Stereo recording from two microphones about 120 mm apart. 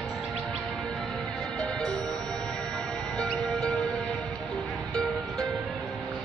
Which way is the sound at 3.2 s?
5° left (ahead or behind).